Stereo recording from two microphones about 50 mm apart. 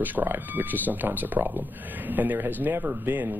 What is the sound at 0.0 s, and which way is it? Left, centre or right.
Speech, right.